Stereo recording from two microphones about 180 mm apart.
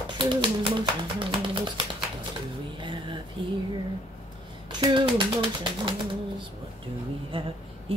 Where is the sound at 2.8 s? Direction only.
25° right (ahead or behind).